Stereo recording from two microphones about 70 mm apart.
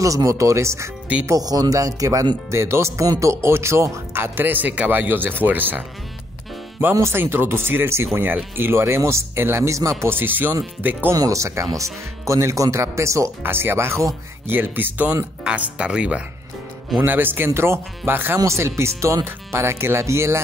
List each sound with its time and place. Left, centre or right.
0.0 s speech: right
1.4 s speech: right
2.5 s speech: right
4.1 s speech: right
6.8 s speech: right
11.1 s speech: right
13.4 s speech: right
14.5 s speech: right
15.4 s speech: centre
17.0 s speech: right